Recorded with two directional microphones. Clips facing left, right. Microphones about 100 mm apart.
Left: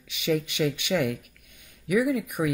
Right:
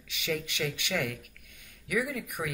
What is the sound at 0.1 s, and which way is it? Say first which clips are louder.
Speech: left 7 dB; 20° left (ahead or behind).